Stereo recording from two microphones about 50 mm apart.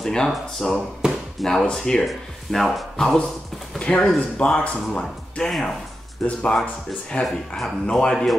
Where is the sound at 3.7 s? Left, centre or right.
Left.